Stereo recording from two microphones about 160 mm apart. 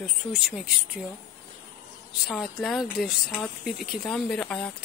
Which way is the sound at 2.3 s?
Centre (ahead or behind).